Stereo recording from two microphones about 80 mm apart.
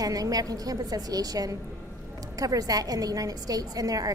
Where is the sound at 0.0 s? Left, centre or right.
Right.